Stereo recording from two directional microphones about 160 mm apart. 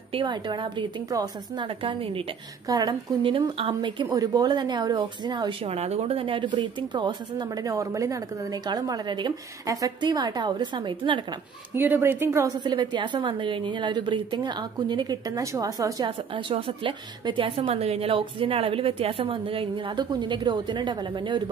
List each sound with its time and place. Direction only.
0.1 s a woman's voice: 30° right (ahead or behind)
2.7 s a woman's voice: 25° right (ahead or behind)
5.7 s a woman's voice: 40° right (ahead or behind)
11.7 s a woman's voice: 15° right (ahead or behind); by 21.4 s 30° right (ahead or behind)